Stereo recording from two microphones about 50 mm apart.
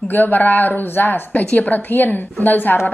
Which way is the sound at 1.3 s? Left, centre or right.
Left.